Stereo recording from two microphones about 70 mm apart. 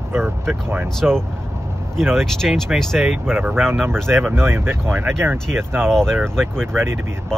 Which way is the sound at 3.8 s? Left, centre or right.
Right.